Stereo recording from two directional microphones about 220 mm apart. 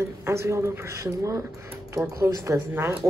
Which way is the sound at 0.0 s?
10° right (ahead or behind).